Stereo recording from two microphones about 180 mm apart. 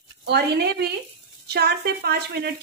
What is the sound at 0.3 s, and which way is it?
Speech, 65° right (ahead or behind).